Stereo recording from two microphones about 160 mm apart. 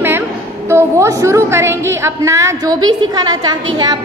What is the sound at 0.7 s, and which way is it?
A woman's voice, 15° right (ahead or behind).